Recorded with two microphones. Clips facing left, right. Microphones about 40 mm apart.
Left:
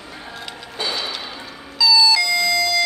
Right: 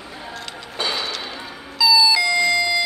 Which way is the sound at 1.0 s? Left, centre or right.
Centre.